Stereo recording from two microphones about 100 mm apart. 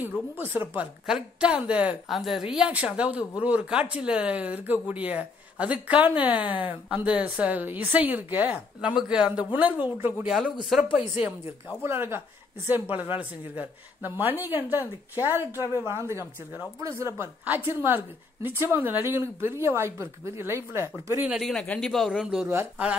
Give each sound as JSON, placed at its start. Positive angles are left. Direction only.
{"t": 0.4, "sound": "speech", "side_deg": -20}
{"t": 1.0, "sound": "a man's voice", "side_deg": -10}
{"t": 10.6, "sound": "a man's voice", "side_deg": 0}
{"t": 10.9, "sound": "speech", "side_deg": -15}
{"t": 16.8, "sound": "speech", "side_deg": -30}
{"t": 17.6, "sound": "speech", "side_deg": -20}
{"t": 21.3, "sound": "a man's voice", "side_deg": 5}